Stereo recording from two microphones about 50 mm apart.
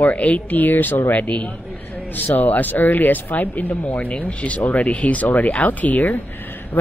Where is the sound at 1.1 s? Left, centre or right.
Left.